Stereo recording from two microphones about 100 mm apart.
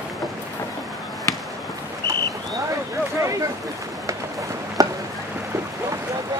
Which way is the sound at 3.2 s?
35° right (ahead or behind).